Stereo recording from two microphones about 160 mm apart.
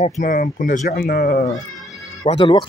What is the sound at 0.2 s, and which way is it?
Speech, 60° left (ahead or behind).